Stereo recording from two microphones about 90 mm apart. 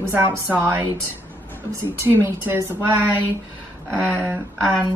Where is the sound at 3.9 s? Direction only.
25° right (ahead or behind).